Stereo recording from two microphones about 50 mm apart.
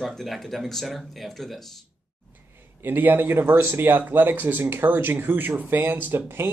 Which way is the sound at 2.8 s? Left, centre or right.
Right.